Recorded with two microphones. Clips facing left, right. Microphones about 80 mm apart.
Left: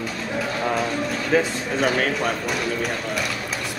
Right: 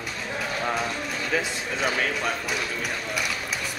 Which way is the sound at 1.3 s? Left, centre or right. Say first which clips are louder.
Left 7 dB; left.